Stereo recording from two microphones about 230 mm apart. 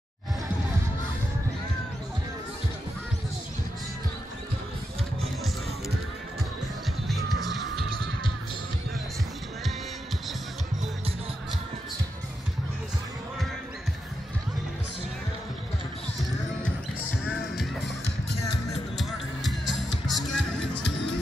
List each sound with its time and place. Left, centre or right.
7.1 s music: centre
17.2 s music: centre
20.1 s music: centre
20.6 s music: left